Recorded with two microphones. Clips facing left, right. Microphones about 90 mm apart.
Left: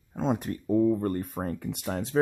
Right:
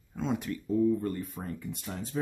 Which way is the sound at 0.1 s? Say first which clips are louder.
Left 4 dB; 40° left (ahead or behind).